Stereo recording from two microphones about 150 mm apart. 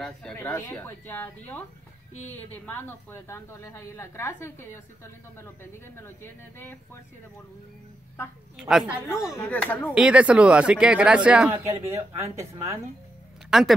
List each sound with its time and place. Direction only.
0.0 s speech: 5° left (ahead or behind)
0.4 s speech: 20° left (ahead or behind)
8.5 s speech: 5° right (ahead or behind)
9.0 s speech: 20° left (ahead or behind)
9.8 s speech: 5° right (ahead or behind)
11.6 s speech: 20° right (ahead or behind)
13.5 s speech: centre (ahead or behind)